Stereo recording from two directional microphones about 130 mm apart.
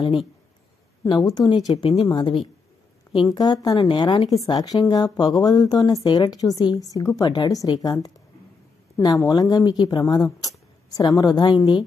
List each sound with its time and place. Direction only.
1.0 s speech: 35° left (ahead or behind)